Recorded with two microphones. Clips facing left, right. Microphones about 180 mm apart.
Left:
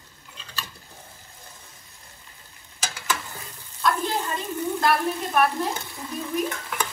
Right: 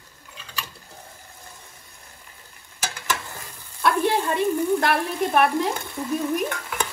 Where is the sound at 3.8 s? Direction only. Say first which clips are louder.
Right 4 dB; 60° right (ahead or behind).